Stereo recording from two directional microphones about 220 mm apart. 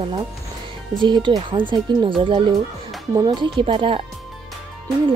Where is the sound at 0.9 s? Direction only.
20° right (ahead or behind).